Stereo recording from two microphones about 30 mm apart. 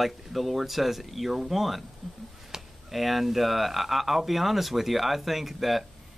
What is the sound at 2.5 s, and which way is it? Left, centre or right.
Chop, centre.